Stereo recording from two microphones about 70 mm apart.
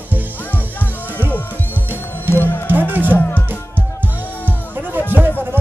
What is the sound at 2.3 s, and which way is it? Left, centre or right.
Music, left.